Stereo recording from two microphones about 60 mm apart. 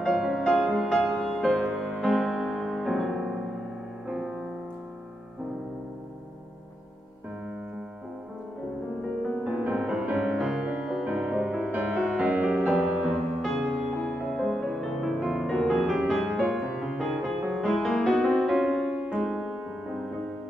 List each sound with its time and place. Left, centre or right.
0.3 s music: centre
1.4 s music: centre
9.4 s music: centre
10.3 s music: centre
11.7 s music: right
13.4 s music: centre
18.9 s music: centre